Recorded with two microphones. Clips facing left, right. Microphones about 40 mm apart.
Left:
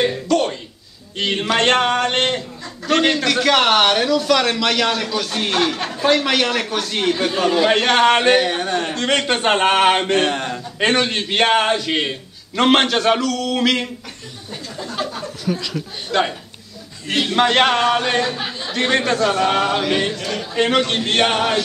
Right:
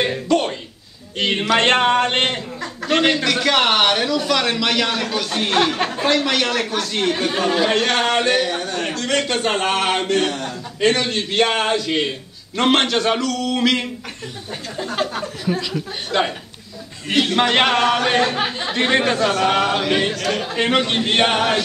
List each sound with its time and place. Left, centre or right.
0.0 s a man's voice: centre
6.0 s a man's voice: centre
7.2 s a man's voice: centre
7.6 s a man's voice: centre
14.9 s speech: right
15.6 s a man's voice: centre
17.4 s a man's voice: centre
18.2 s speech: right
18.8 s a man's voice: centre